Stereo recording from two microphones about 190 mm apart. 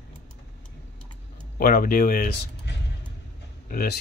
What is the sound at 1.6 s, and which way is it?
Speech, 50° left (ahead or behind).